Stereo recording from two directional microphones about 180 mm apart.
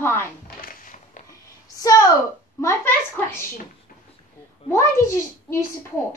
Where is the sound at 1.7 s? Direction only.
20° left (ahead or behind).